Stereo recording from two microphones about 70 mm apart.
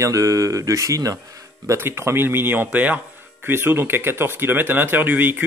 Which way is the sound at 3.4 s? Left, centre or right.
Right.